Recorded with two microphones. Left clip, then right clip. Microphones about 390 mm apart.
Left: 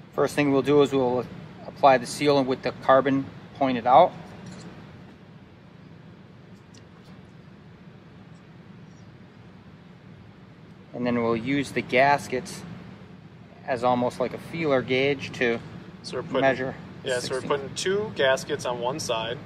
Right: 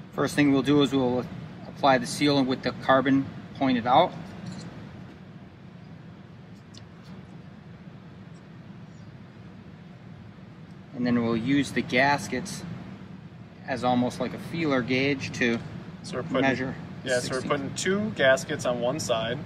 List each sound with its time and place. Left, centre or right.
0.1 s speech: centre
11.0 s speech: centre
13.7 s speech: centre
16.4 s speech: centre